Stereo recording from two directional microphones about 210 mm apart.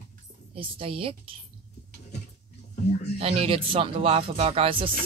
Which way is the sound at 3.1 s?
25° right (ahead or behind).